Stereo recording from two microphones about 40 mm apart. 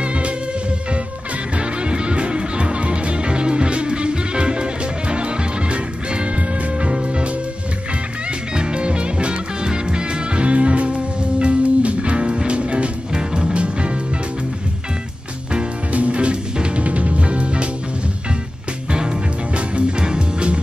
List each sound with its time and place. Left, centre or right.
0.0 s music: right
1.6 s music: right
8.5 s music: right
15.9 s music: right
18.9 s music: right